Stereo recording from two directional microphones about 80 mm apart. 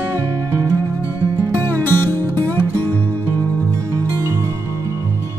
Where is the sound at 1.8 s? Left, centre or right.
Left.